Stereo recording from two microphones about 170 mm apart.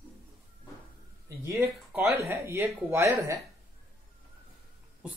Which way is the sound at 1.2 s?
15° right (ahead or behind).